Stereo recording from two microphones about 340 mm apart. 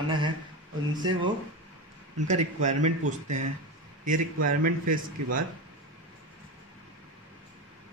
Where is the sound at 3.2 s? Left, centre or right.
Right.